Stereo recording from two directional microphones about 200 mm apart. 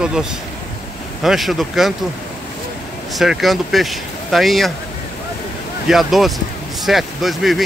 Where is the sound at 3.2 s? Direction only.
Centre (ahead or behind).